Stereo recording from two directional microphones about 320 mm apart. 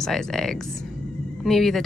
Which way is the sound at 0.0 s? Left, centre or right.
Centre.